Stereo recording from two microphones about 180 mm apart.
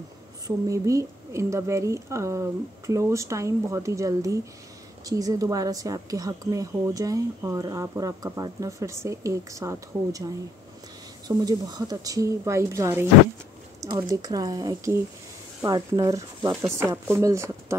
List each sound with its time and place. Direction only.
0.7 s a woman's voice: 15° right (ahead or behind)